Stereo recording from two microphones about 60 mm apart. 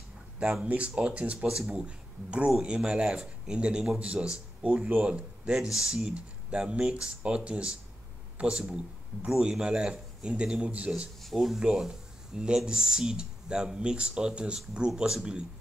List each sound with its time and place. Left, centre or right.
0.7 s a man's voice: right
11.2 s speech: centre
11.6 s a man's voice: centre